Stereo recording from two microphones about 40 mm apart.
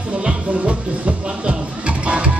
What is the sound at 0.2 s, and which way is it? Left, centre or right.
Music, right.